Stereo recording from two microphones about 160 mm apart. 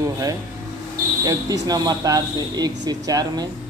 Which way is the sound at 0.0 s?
20° right (ahead or behind).